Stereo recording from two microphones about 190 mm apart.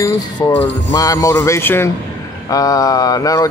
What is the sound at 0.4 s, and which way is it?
Speech, 15° left (ahead or behind).